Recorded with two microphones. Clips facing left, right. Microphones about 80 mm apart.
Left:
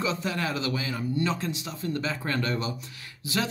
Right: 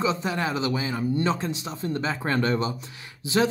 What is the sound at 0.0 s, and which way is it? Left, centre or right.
Speech, right.